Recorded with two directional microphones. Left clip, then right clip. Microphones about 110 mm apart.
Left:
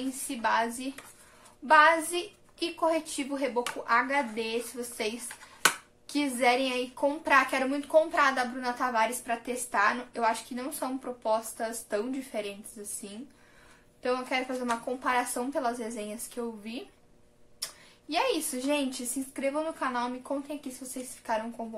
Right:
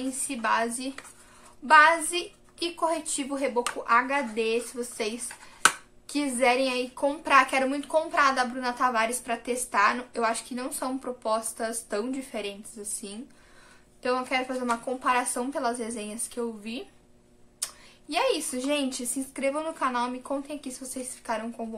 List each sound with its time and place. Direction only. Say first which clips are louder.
0.3 s a woman's voice: right 1 dB; 25° right (ahead or behind)
5.6 s a sound: right 3 dB; 25° right (ahead or behind)
6.3 s a woman's voice: right 3 dB; 30° right (ahead or behind)
14.0 s a woman's voice: right 3 dB; 25° right (ahead or behind)